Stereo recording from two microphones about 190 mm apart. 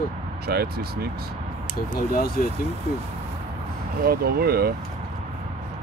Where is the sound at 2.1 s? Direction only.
50° left (ahead or behind).